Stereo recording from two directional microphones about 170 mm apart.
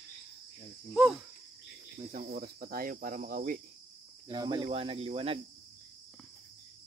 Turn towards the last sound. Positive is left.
turn(degrees=-35)  # may be behind; listen again after turning